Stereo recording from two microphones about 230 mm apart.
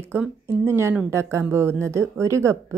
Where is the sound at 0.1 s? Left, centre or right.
Centre.